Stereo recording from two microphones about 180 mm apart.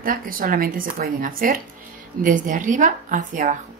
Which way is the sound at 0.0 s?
50° right (ahead or behind).